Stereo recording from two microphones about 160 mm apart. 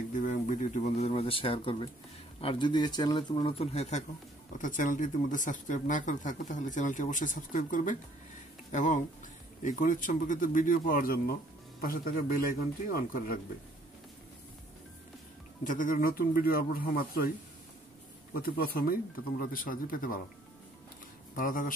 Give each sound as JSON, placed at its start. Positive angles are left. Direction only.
{"t": 0.1, "sound": "speech", "side_deg": 55}
{"t": 4.6, "sound": "speech", "side_deg": 55}
{"t": 15.6, "sound": "speech", "side_deg": 55}
{"t": 18.3, "sound": "speech", "side_deg": 70}
{"t": 21.4, "sound": "speech", "side_deg": 60}